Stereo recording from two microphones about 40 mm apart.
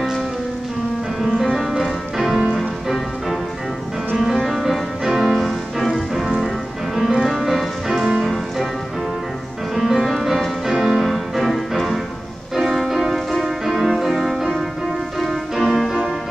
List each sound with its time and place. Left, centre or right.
1.2 s music: centre
4.5 s music: centre
7.2 s music: centre
7.9 s music: centre
9.8 s music: centre
10.7 s music: centre
11.1 s music: centre
12.8 s music: centre